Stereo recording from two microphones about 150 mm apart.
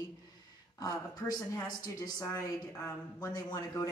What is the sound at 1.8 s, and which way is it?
A man's voice, 25° left (ahead or behind).